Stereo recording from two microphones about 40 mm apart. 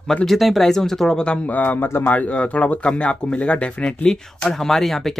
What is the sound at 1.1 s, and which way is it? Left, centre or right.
Speech, left.